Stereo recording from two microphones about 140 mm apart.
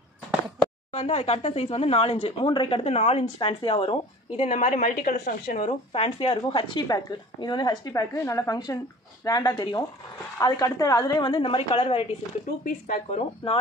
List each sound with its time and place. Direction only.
0.9 s speech: 50° left (ahead or behind)
2.4 s a woman's voice: 35° left (ahead or behind)
2.8 s speech: 50° left (ahead or behind)
4.5 s speech: 60° left (ahead or behind)
6.1 s a woman's voice: 35° left (ahead or behind)
12.6 s speech: 70° left (ahead or behind)